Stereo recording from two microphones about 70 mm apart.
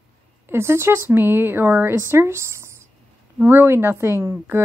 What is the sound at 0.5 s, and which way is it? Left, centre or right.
Speech, right.